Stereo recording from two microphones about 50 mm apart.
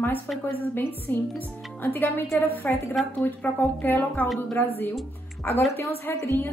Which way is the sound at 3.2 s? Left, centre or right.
Left.